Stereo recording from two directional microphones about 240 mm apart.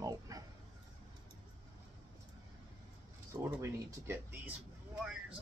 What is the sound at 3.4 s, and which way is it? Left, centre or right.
Speech, centre.